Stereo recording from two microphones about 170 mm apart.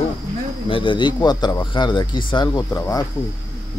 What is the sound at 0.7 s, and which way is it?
Speech, 30° left (ahead or behind).